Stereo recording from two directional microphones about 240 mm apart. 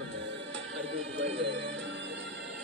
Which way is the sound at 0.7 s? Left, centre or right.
Right.